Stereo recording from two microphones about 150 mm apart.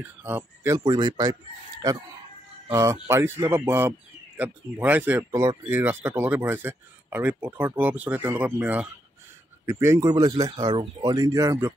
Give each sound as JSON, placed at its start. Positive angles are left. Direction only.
{"t": 0.2, "sound": "speech", "side_deg": -15}
{"t": 0.7, "sound": "speech", "side_deg": -25}
{"t": 5.3, "sound": "speech", "side_deg": -25}
{"t": 5.7, "sound": "speech", "side_deg": -15}